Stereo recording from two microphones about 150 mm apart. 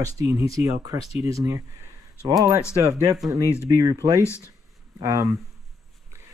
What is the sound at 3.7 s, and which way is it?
Speech, 25° right (ahead or behind).